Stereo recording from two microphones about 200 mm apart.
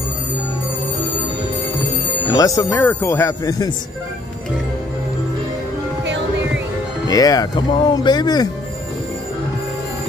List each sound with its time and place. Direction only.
2.3 s speech: 15° left (ahead or behind)
7.1 s speech: 20° left (ahead or behind)